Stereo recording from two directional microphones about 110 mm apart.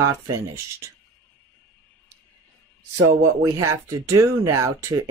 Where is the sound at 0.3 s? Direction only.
25° right (ahead or behind).